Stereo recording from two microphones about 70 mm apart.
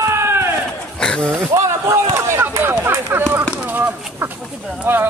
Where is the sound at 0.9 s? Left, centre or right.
Centre.